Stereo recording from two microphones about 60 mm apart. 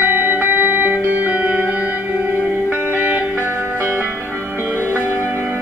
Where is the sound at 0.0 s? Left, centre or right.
Right.